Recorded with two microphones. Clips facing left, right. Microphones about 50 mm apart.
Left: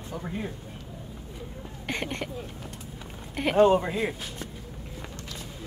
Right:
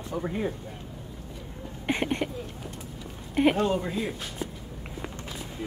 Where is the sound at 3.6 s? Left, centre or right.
Left.